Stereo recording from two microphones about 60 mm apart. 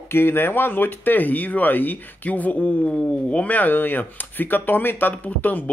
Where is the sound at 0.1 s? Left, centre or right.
Left.